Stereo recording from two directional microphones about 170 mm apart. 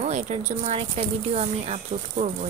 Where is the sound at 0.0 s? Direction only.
45° right (ahead or behind).